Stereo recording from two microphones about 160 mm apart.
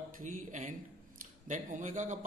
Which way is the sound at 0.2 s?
55° right (ahead or behind).